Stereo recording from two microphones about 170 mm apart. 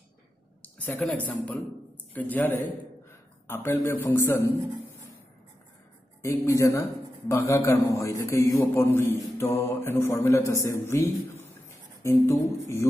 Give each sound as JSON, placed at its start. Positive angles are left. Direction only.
{"t": 0.6, "sound": "a woman's voice", "side_deg": 10}
{"t": 6.2, "sound": "a man's voice", "side_deg": 15}